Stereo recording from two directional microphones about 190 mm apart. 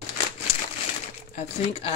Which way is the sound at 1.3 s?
30° left (ahead or behind).